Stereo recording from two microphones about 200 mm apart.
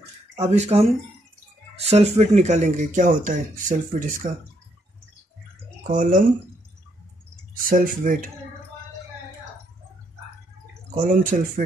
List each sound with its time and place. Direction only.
0.4 s speech: 30° right (ahead or behind)
5.9 s speech: 40° right (ahead or behind)
7.5 s speech: 45° right (ahead or behind)
11.2 s speech: 40° right (ahead or behind)